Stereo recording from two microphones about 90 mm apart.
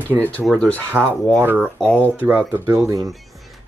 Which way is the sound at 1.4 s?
25° right (ahead or behind).